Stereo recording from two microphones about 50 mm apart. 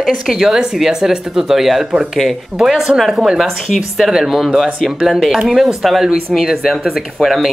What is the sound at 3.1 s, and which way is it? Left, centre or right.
Speech, centre.